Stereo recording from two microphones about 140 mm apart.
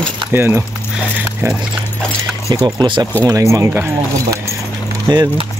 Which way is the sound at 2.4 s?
30° right (ahead or behind).